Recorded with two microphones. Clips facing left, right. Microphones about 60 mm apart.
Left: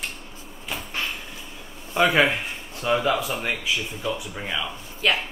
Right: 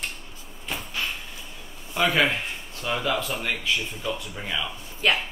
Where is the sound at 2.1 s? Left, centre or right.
Centre.